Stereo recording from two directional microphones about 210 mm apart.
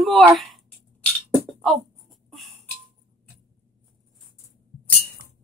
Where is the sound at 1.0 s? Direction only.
Centre (ahead or behind).